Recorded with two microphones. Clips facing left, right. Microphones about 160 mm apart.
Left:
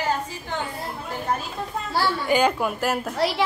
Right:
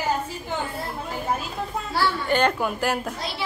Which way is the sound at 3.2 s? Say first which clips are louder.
Left 9 dB; 90° left.